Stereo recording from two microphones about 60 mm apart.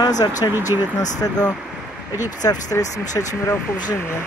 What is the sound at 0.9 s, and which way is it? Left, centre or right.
Speech, left.